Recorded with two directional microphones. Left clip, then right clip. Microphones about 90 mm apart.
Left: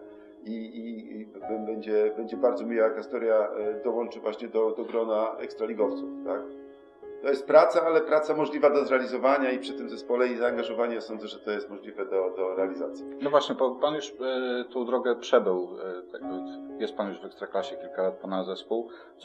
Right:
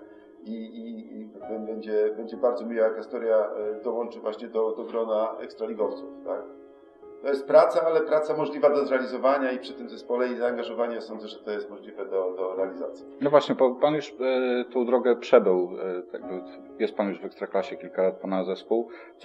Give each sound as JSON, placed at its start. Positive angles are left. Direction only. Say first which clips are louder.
{"t": 0.5, "sound": "a man's voice", "louder": "even", "side_deg": 30}
{"t": 13.3, "sound": "a man's voice", "louder": "right 4 dB", "side_deg": -20}